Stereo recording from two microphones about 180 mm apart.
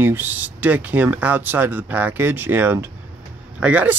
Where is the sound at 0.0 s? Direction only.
10° right (ahead or behind).